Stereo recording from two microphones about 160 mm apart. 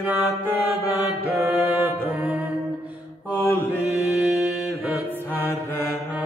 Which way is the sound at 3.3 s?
15° left (ahead or behind).